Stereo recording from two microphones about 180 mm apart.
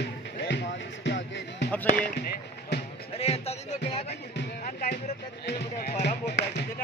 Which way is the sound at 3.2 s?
35° left (ahead or behind).